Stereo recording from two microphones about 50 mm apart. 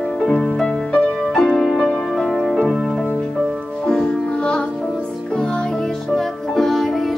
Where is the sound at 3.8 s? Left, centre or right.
Centre.